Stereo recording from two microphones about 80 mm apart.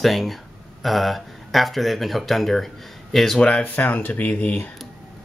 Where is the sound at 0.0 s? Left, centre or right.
Centre.